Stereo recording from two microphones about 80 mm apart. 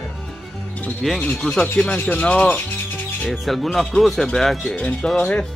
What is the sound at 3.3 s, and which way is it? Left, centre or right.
Speech, centre.